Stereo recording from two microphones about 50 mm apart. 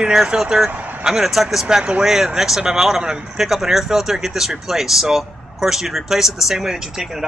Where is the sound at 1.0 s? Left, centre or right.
Centre.